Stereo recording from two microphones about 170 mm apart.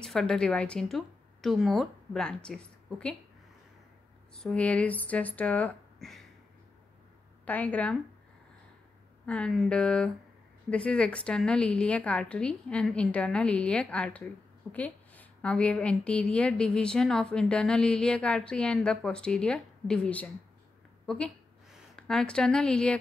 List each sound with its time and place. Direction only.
0.0 s a woman's voice: 5° left (ahead or behind)
4.4 s a woman's voice: 5° left (ahead or behind)
7.4 s a woman's voice: 10° left (ahead or behind)
9.2 s a woman's voice: 5° left (ahead or behind)
21.0 s a sound: 5° left (ahead or behind)
21.7 s speech: 5° left (ahead or behind)